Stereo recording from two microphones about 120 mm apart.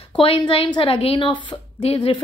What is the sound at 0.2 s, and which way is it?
A woman's voice, 45° left (ahead or behind).